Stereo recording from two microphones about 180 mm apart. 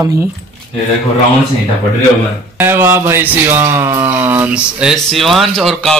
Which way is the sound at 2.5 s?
10° right (ahead or behind).